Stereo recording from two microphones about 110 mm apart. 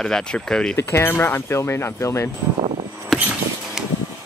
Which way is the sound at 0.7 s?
25° left (ahead or behind).